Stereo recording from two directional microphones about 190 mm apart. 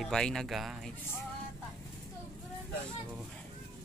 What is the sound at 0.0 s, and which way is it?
Speech, 5° left (ahead or behind).